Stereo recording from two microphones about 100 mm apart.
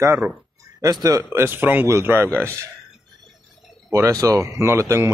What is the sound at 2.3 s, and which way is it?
Speech, 15° left (ahead or behind).